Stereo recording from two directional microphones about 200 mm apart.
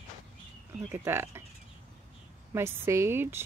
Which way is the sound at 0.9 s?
10° right (ahead or behind).